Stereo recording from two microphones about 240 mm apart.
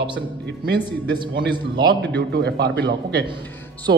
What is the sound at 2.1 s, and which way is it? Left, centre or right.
Speech, right.